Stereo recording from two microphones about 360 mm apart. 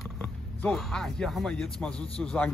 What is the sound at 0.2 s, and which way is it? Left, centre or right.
Speech, centre.